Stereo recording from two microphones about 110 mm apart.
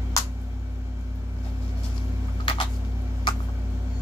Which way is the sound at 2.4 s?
50° left (ahead or behind).